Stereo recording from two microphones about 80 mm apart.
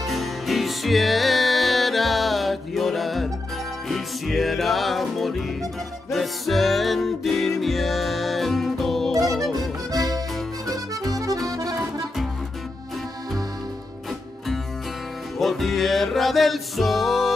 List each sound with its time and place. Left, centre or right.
0.0 s music: centre
9.9 s music: right
11.4 s accordion: right
15.3 s music: centre